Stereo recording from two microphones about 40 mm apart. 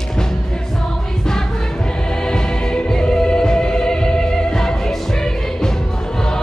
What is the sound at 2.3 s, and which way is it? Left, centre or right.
Music, centre.